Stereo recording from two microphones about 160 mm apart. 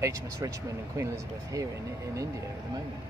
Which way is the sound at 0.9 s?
20° right (ahead or behind).